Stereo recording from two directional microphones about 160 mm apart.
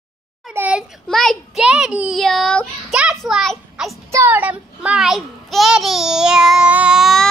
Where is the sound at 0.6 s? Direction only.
10° right (ahead or behind).